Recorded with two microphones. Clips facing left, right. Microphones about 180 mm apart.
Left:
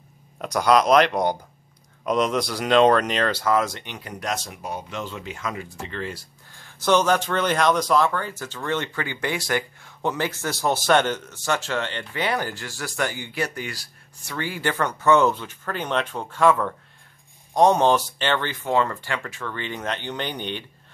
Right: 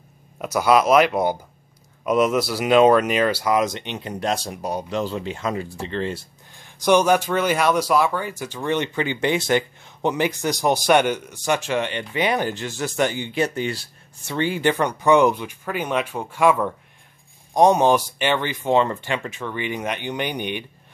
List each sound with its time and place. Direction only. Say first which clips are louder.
0.4 s speech: right 1 dB; 5° right (ahead or behind)